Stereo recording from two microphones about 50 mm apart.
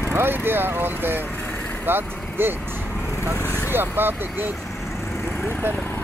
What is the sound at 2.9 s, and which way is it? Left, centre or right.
Vehicle, left.